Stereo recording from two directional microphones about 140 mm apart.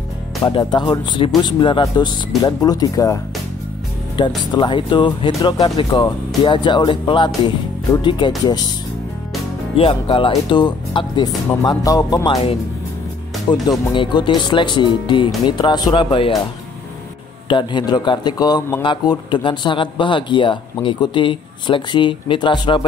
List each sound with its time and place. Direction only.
0.5 s speech: 35° left (ahead or behind)
4.5 s speech: 35° left (ahead or behind)
9.8 s speech: 40° left (ahead or behind)
13.5 s speech: 30° left (ahead or behind)
17.5 s speech: 35° left (ahead or behind)